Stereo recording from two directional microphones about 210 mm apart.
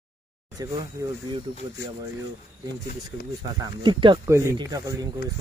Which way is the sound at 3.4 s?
20° right (ahead or behind).